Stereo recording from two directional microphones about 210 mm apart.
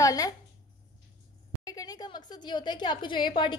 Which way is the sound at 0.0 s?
15° left (ahead or behind).